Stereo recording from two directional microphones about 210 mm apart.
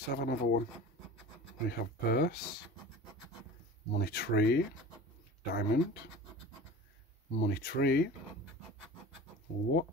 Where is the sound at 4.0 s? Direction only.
50° left (ahead or behind).